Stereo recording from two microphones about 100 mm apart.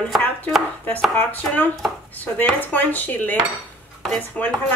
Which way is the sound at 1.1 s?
15° left (ahead or behind).